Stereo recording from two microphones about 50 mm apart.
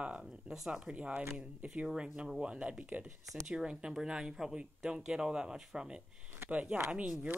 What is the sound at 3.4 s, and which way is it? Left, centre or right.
Speech, centre.